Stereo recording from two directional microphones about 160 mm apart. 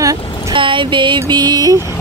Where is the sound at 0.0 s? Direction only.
20° right (ahead or behind).